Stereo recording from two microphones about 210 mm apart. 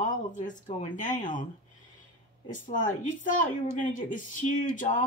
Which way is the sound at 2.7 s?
35° left (ahead or behind).